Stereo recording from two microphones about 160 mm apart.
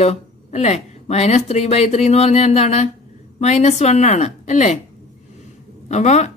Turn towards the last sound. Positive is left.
turn(degrees=45)  # may be behind; listen again after turning